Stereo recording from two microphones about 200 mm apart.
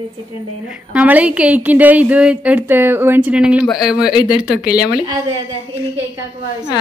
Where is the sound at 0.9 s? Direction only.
5° right (ahead or behind).